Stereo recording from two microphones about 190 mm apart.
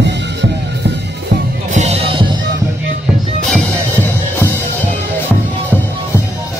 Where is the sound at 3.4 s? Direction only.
10° left (ahead or behind).